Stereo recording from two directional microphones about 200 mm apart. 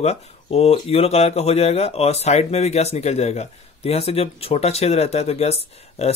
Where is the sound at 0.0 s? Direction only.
35° left (ahead or behind).